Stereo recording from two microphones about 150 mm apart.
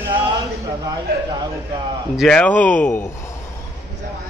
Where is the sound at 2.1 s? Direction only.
5° left (ahead or behind).